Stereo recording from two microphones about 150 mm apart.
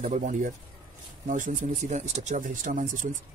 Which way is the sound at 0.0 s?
55° right (ahead or behind).